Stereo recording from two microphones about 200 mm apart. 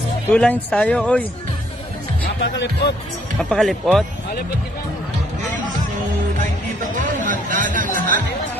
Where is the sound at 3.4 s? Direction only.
Centre (ahead or behind).